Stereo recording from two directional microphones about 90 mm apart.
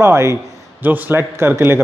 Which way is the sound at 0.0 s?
30° right (ahead or behind).